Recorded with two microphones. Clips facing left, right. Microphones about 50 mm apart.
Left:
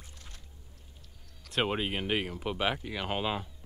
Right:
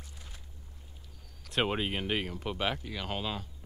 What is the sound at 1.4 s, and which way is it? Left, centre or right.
Speech, centre.